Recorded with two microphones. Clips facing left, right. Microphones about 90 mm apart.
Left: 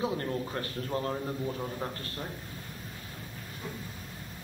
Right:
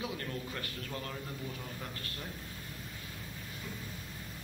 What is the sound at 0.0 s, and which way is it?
A man's voice, 30° left (ahead or behind).